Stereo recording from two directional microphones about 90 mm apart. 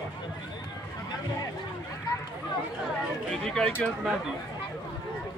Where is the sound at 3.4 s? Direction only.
5° left (ahead or behind).